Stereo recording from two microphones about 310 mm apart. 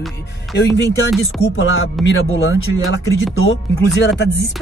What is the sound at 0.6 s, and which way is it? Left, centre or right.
Speech, left.